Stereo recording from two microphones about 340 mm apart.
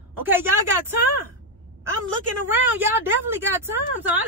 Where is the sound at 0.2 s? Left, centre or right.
Centre.